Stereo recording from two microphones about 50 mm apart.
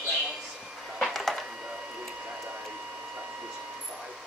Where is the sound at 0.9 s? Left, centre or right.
Centre.